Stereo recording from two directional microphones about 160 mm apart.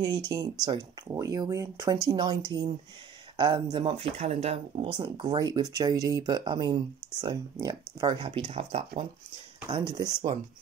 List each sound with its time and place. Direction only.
0.3 s speech: 20° right (ahead or behind); by 5.0 s 40° right (ahead or behind)
5.0 s speech: 25° right (ahead or behind)
8.3 s speech: 35° right (ahead or behind)
9.7 s speech: 25° right (ahead or behind)